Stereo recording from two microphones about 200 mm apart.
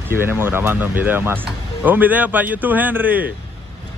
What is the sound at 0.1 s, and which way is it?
A man's voice, 10° right (ahead or behind).